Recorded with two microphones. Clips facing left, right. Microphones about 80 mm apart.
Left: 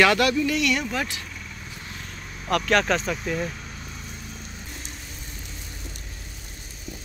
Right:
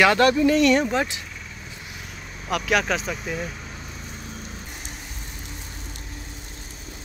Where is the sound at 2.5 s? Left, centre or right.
Centre.